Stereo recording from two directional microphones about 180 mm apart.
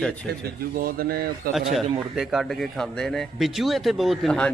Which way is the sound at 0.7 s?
55° right (ahead or behind).